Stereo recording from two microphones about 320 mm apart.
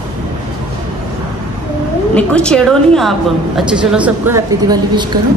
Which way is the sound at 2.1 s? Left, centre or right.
Centre.